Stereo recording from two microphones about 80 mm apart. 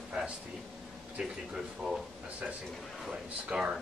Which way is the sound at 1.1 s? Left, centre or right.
Centre.